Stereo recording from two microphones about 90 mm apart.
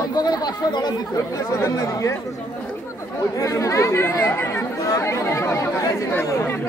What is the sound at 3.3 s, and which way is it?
Speech, 35° left (ahead or behind).